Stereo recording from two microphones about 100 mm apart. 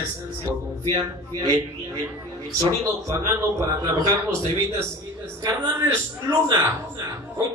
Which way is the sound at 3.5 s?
35° right (ahead or behind).